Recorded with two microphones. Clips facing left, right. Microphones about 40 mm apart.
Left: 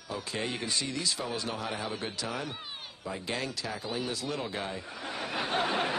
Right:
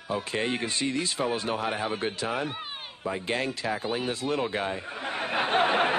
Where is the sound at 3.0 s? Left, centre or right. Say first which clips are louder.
Right 6 dB; right.